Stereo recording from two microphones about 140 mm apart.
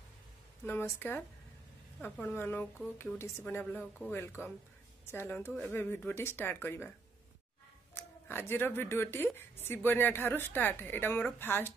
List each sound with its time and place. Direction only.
0.7 s a woman's voice: 15° left (ahead or behind)
7.9 s a woman's voice: 15° left (ahead or behind)